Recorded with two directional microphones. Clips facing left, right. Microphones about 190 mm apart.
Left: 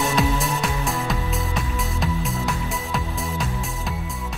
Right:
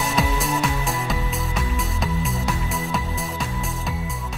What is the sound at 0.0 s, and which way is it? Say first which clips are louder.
Music: left 2 dB; centre (ahead or behind).